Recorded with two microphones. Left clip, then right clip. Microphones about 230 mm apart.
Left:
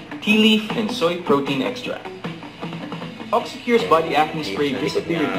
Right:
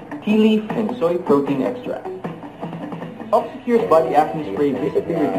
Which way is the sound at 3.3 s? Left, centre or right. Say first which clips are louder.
Right 2 dB; centre.